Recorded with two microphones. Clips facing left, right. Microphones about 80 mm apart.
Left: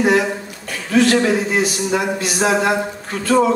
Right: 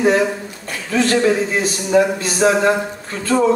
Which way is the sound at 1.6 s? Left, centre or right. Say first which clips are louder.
Right 3 dB; right.